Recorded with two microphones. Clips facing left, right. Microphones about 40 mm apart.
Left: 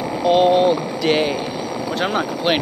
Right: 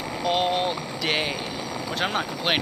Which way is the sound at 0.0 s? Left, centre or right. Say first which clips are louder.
Left 9 dB; centre.